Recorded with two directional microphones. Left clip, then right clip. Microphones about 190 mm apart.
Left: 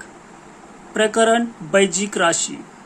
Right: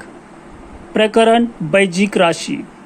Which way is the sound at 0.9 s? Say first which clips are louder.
Right 4 dB; 30° right (ahead or behind).